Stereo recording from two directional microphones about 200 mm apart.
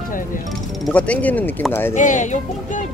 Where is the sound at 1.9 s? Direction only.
40° left (ahead or behind).